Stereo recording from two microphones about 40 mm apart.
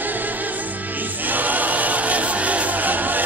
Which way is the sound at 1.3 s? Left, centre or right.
Right.